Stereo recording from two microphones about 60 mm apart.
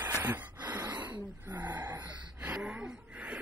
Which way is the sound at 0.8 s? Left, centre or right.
Right.